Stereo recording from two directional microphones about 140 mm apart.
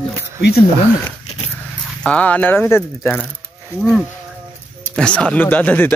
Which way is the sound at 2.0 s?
10° left (ahead or behind).